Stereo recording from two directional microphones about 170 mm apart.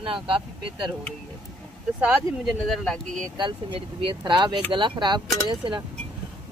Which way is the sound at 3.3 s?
30° right (ahead or behind).